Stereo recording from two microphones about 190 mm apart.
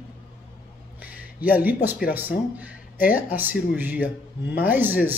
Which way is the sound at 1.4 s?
10° right (ahead or behind).